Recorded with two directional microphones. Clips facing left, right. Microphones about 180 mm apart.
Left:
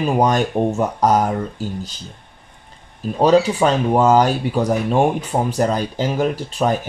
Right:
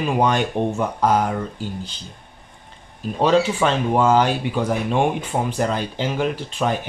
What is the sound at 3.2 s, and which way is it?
Speech, 40° left (ahead or behind).